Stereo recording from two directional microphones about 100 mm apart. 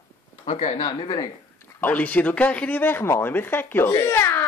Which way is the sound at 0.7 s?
55° left (ahead or behind).